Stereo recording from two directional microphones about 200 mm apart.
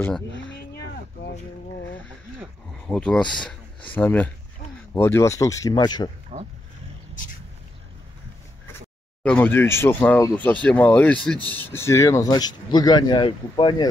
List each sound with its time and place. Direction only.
2.4 s speech: 5° left (ahead or behind); by 6.0 s 20° left (ahead or behind)
6.3 s roaring cats: 35° right (ahead or behind)
9.2 s speech: 10° left (ahead or behind); by 13.8 s 25° left (ahead or behind)